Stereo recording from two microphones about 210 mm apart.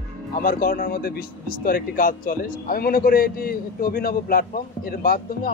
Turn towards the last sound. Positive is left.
turn(degrees=45)  # may be behind; listen again after turning